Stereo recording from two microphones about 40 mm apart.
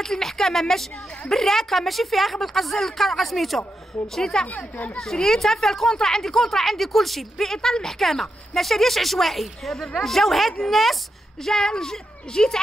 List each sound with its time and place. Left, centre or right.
0.0 s a woman's voice: centre
4.5 s speech: left
4.9 s speech: centre
11.4 s a woman's voice: centre